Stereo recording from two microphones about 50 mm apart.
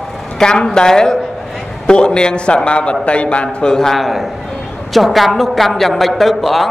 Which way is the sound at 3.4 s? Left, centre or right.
Centre.